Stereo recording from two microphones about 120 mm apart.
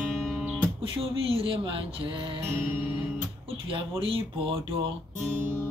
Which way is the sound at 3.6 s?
50° right (ahead or behind).